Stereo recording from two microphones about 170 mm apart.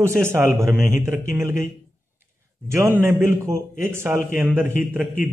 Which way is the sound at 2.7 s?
15° right (ahead or behind).